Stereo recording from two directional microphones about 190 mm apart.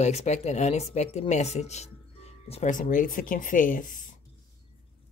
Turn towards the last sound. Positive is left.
turn(degrees=45)  # may be behind; listen again after turning